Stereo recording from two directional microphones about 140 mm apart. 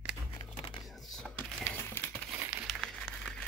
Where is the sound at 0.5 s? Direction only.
40° left (ahead or behind).